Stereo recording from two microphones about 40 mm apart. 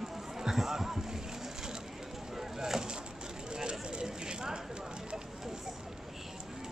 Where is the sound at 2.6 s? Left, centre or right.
Centre.